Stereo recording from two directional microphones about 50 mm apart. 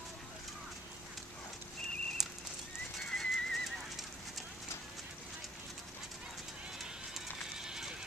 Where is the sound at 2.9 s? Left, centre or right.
Centre.